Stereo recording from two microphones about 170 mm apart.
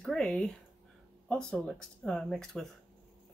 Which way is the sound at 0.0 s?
5° left (ahead or behind).